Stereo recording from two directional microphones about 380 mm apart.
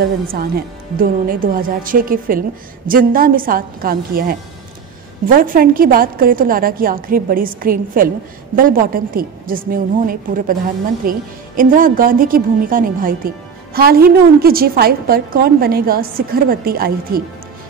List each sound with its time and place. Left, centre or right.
0.0 s a woman's voice: right